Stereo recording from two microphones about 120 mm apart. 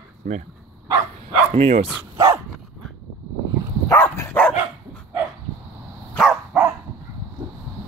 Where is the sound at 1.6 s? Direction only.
55° right (ahead or behind).